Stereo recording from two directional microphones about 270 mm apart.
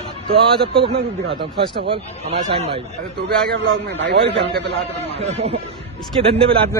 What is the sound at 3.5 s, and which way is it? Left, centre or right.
A man's voice, right.